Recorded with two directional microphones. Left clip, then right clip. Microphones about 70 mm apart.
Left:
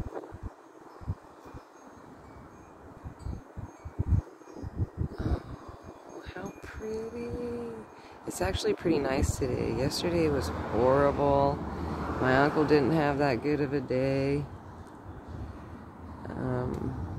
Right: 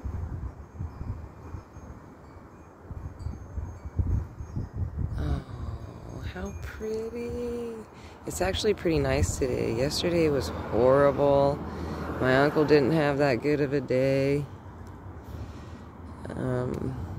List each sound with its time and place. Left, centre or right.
6.9 s a sound: right
8.3 s speech: right
16.3 s vehicle: right